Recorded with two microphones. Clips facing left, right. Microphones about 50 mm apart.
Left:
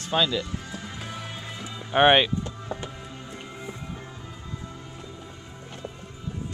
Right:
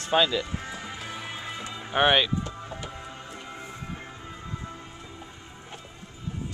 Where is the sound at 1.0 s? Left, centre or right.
Centre.